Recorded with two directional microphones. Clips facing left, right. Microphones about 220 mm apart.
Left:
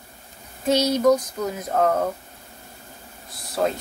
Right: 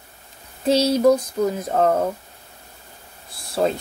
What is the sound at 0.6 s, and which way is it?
A woman's voice, 30° right (ahead or behind).